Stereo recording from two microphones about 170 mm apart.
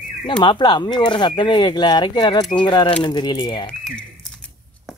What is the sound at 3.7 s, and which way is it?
Speech, 5° left (ahead or behind).